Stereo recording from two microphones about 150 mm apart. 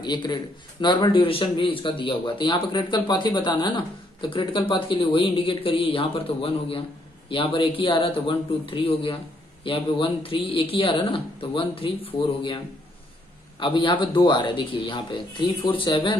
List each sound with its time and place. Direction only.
0.0 s a man's voice: 30° left (ahead or behind)
13.6 s a man's voice: 35° left (ahead or behind)